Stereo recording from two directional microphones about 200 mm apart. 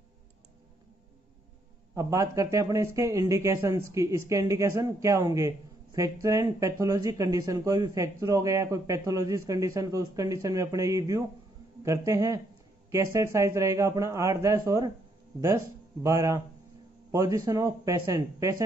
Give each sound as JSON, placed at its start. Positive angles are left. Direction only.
{"t": 2.0, "sound": "speech", "side_deg": -15}